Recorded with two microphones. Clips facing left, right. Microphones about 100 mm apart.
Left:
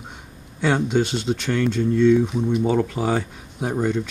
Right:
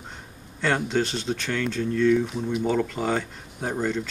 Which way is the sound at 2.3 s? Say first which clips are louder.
Left 4 dB; centre (ahead or behind).